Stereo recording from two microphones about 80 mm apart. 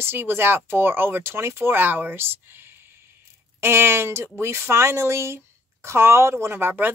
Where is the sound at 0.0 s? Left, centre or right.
Right.